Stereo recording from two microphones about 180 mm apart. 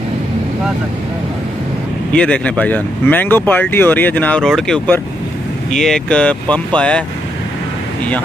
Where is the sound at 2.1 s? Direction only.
5° left (ahead or behind).